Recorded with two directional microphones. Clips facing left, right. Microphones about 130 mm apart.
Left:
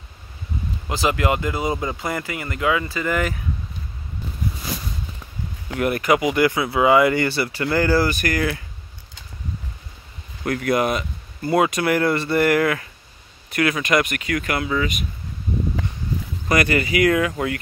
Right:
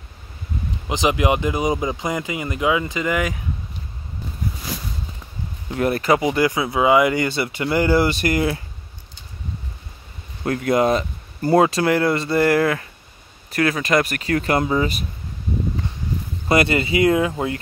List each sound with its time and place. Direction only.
0.8 s speech: 20° right (ahead or behind)
5.8 s speech: 30° right (ahead or behind)
10.4 s speech: 25° right (ahead or behind)
16.4 s speech: 25° right (ahead or behind)